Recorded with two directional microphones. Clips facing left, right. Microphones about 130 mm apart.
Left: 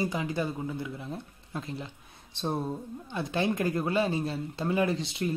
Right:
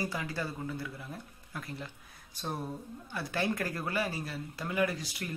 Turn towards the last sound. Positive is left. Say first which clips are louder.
# left 8 dB
turn(degrees=25)  # may be behind; listen again after turning